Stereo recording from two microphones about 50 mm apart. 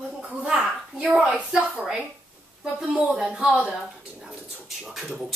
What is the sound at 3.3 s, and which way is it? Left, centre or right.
A woman's voice, right.